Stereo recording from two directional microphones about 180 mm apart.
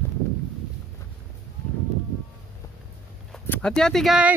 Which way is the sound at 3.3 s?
5° left (ahead or behind).